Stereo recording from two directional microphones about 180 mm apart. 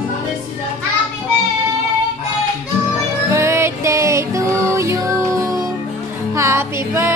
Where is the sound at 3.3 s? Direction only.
15° right (ahead or behind).